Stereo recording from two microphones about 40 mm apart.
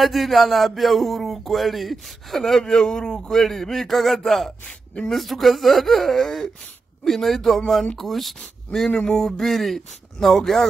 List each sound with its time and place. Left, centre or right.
0.0 s speech: centre
4.6 s speech: centre
5.1 s speech: centre